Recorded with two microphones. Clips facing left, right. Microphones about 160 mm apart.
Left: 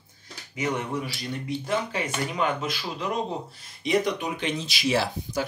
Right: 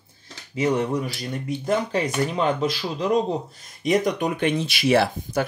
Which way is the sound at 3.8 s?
45° right (ahead or behind).